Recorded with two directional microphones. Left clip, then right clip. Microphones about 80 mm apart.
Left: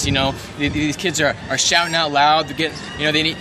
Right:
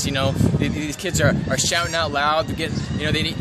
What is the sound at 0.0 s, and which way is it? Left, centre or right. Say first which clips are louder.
Speech: left 2 dB; right.